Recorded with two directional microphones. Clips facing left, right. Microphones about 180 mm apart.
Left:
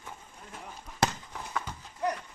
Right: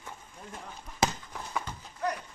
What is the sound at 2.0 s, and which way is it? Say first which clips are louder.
Clip-clop: left 1 dB; 15° left (ahead or behind).